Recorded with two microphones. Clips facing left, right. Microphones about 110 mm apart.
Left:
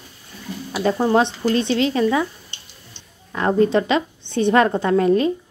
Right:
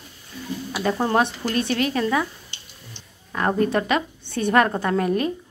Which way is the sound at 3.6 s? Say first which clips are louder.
Left 6 dB; 25° left (ahead or behind).